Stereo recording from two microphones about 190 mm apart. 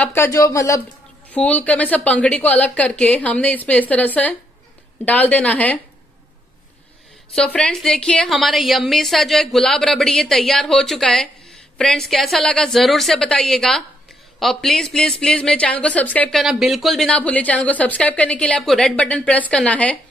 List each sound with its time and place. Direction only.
0.0 s a woman's voice: 10° left (ahead or behind)
7.3 s speech: 5° left (ahead or behind)